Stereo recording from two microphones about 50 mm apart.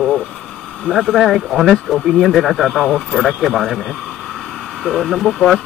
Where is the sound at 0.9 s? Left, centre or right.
Centre.